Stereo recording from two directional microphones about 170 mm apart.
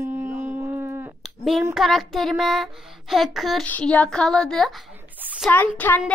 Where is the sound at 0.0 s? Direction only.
10° right (ahead or behind).